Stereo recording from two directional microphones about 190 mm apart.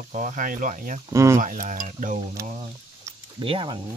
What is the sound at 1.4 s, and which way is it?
Speech, 45° right (ahead or behind).